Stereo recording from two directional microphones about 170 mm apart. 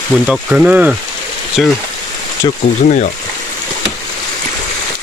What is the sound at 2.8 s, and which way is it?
Speech, 50° left (ahead or behind).